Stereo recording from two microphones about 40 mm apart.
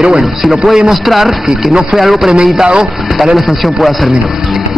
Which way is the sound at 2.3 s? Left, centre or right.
Right.